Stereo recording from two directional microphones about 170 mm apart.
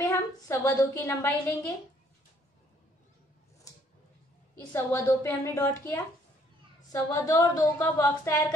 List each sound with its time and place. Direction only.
0.0 s a woman's voice: 15° left (ahead or behind)
4.7 s a woman's voice: 15° left (ahead or behind)